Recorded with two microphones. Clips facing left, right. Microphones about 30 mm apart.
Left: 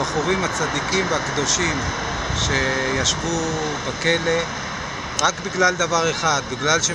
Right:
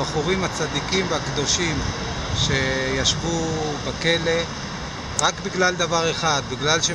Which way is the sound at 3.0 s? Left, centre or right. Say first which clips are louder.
Left 1 dB; centre.